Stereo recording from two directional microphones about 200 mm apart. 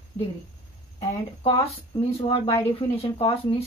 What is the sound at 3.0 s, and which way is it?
Speech, 25° left (ahead or behind).